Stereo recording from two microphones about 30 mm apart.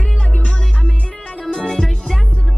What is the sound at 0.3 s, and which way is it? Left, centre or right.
Music, left.